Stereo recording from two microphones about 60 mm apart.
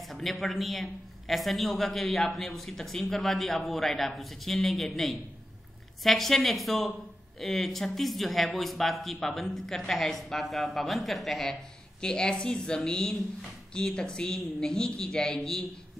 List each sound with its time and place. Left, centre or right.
0.1 s a man's voice: centre
12.0 s a woman's voice: centre